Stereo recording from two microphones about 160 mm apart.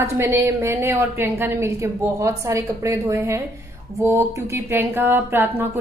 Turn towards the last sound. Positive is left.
turn(degrees=-15)  # may be behind; listen again after turning